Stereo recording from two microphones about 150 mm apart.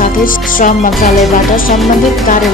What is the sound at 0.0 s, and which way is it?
Music, 65° left (ahead or behind).